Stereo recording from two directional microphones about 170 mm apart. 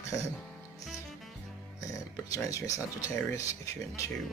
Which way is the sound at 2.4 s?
20° left (ahead or behind).